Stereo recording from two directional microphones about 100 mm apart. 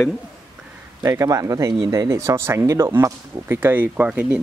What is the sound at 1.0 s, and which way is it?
Speech, 35° right (ahead or behind).